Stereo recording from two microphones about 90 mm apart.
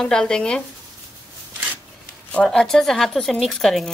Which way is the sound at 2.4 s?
5° left (ahead or behind).